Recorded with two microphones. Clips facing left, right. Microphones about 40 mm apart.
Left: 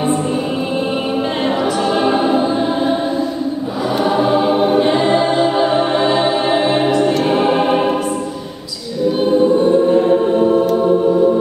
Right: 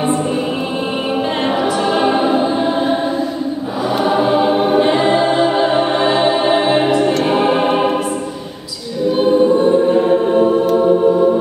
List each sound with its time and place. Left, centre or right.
1.4 s choir: centre
9.1 s choir: centre